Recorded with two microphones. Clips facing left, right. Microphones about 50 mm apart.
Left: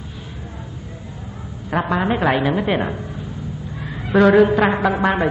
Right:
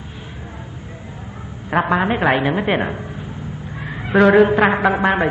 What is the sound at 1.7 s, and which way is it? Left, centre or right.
A woman's voice, right.